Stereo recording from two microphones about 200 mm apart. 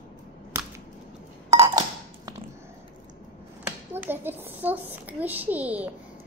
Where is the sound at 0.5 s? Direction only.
10° right (ahead or behind).